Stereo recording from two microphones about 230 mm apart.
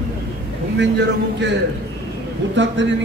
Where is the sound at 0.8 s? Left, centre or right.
Right.